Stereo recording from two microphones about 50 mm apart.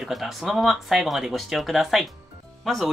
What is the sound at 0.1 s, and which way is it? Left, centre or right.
Speech, centre.